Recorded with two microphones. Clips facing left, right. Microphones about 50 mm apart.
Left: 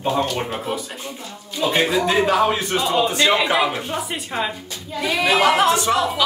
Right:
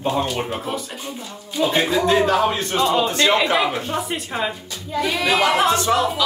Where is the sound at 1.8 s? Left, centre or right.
Centre.